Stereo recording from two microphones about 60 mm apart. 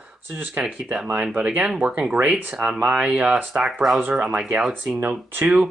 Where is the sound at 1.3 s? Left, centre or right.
Right.